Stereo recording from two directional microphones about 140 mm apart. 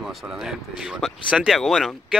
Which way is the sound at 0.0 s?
5° right (ahead or behind).